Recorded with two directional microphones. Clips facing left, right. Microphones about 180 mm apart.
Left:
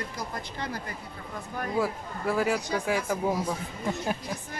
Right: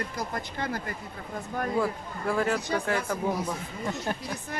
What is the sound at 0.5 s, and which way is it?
Speech, 55° right (ahead or behind).